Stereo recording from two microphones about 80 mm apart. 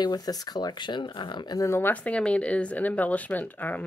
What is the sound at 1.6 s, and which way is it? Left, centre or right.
Speech, left.